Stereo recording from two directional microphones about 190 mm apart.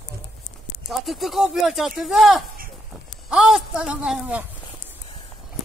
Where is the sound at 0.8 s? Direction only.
Centre (ahead or behind).